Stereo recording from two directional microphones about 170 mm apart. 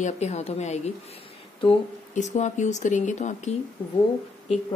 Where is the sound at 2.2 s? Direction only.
45° left (ahead or behind).